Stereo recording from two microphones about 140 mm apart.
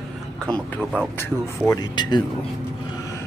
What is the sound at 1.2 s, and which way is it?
Speech, 20° left (ahead or behind).